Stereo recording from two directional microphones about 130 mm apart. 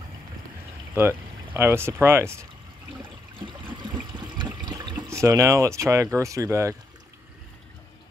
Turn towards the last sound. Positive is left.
turn(degrees=-20)  # may be behind; listen again after turning